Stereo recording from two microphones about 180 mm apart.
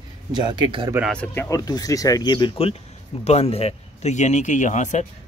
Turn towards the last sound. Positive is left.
turn(degrees=40)  # may be behind; listen again after turning